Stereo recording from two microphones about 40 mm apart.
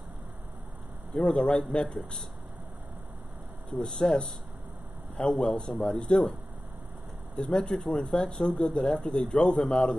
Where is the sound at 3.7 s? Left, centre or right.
Centre.